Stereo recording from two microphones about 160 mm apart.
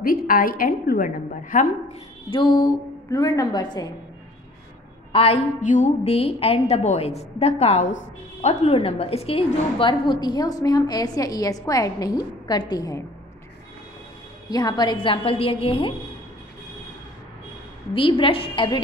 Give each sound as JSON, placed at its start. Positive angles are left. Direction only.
{"t": 0.0, "sound": "a woman's voice", "side_deg": 65}
{"t": 2.3, "sound": "a woman's voice", "side_deg": 30}
{"t": 5.1, "sound": "a woman's voice", "side_deg": 40}
{"t": 5.6, "sound": "a woman's voice", "side_deg": 50}
{"t": 14.5, "sound": "a woman's voice", "side_deg": 25}
{"t": 17.9, "sound": "a woman's voice", "side_deg": 35}